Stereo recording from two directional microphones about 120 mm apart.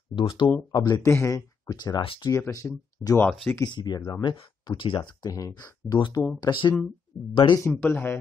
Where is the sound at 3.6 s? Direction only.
35° left (ahead or behind).